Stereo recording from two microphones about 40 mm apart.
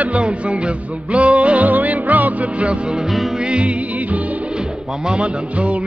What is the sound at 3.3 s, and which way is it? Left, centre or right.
Music, right.